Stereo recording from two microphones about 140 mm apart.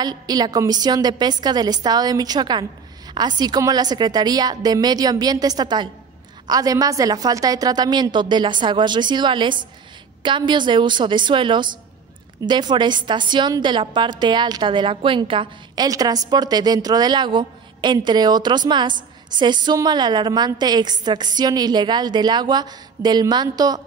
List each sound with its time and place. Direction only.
0.0 s a woman's voice: 30° right (ahead or behind)